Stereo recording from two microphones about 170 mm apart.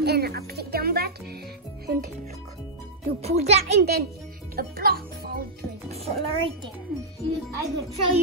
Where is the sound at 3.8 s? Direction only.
65° right (ahead or behind).